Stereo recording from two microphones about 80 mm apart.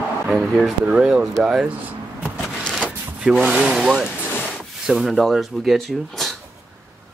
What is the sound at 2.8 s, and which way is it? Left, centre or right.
Speech, centre.